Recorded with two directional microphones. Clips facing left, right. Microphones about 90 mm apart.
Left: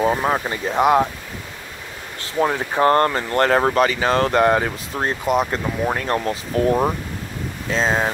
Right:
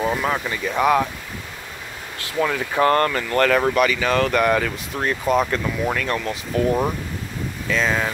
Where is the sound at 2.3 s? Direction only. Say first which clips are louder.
Left 1 dB; 30° left (ahead or behind).